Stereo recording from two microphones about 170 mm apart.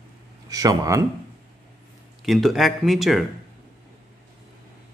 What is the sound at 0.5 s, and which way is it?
Speech, 20° right (ahead or behind).